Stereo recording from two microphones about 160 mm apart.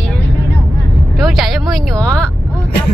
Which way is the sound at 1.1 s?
Centre (ahead or behind).